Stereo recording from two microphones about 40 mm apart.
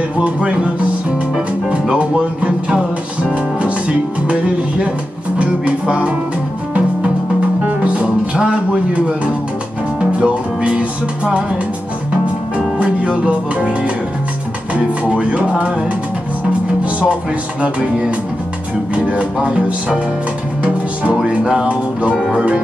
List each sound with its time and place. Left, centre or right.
0.2 s music: right
5.4 s speech: right
7.6 s music: right
9.9 s music: right
13.2 s music: right
15.0 s music: right
17.1 s music: right
20.6 s music: right